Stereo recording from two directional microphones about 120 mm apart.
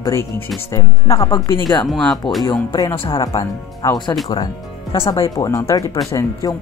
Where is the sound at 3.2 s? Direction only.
30° left (ahead or behind).